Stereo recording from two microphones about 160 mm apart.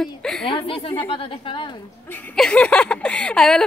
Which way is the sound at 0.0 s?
5° left (ahead or behind).